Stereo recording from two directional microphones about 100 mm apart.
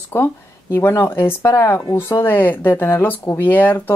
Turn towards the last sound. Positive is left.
turn(degrees=15)  # may be behind; listen again after turning